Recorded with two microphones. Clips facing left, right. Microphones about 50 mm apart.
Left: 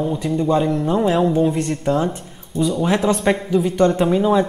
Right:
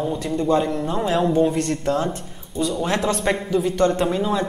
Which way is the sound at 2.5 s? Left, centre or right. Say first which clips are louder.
Left 4 dB; centre.